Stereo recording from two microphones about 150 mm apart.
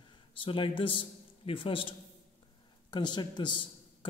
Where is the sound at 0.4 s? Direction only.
35° left (ahead or behind).